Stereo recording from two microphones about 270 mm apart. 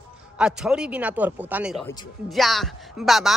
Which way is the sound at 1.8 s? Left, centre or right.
Centre.